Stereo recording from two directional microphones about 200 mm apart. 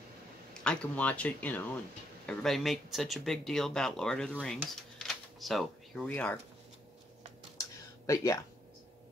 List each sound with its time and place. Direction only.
0.7 s speech: 5° left (ahead or behind)
4.9 s a sound: centre (ahead or behind)
8.1 s speech: 15° left (ahead or behind)